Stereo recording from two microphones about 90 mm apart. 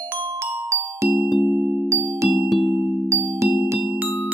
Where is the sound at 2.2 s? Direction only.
Centre (ahead or behind).